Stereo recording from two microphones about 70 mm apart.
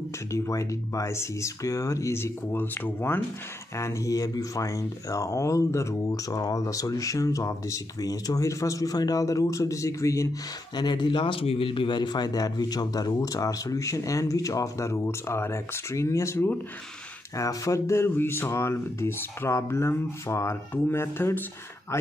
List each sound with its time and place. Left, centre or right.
0.3 s speech: left
2.5 s speech: left
3.7 s speech: left
10.8 s speech: left